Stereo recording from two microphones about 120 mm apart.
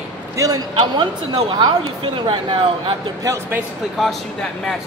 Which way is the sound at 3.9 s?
5° left (ahead or behind).